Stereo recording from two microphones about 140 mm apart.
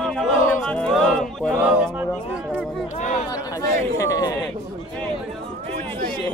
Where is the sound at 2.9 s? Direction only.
60° left (ahead or behind).